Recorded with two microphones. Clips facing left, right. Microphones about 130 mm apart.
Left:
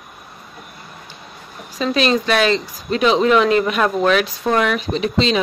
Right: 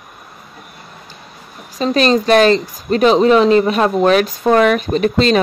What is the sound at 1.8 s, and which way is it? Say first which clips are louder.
Speech: right 4 dB; 40° right (ahead or behind).